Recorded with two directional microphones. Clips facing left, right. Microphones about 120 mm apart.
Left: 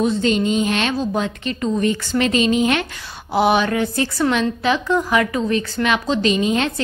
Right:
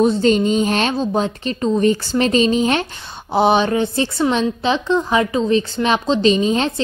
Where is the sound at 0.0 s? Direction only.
35° right (ahead or behind).